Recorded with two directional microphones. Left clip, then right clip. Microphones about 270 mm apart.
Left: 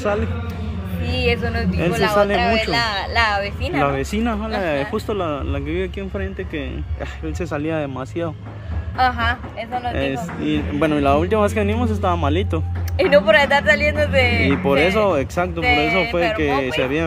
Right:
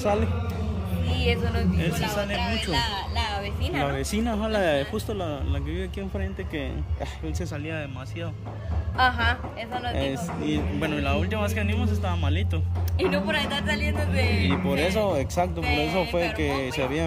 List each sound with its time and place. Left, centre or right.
1.1 s speech: centre
7.3 s a man's voice: centre
8.9 s a woman's voice: centre
9.9 s speech: centre
10.8 s a man's voice: centre
12.9 s speech: centre